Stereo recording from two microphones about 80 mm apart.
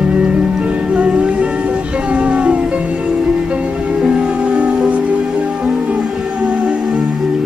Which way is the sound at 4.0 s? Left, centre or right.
Centre.